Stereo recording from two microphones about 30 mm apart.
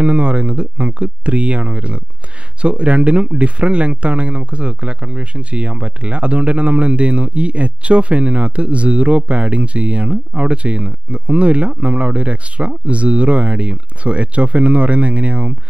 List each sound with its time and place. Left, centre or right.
0.0 s speech: right